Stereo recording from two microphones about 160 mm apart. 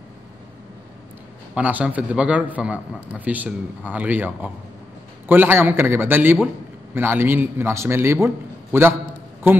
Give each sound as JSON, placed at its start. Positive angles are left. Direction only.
{"t": 1.5, "sound": "a man's voice", "side_deg": -10}
{"t": 9.5, "sound": "a man's voice", "side_deg": -10}